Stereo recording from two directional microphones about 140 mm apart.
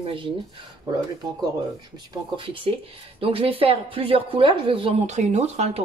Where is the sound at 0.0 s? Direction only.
40° right (ahead or behind).